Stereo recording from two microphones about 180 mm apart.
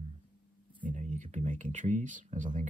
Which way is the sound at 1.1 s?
40° right (ahead or behind).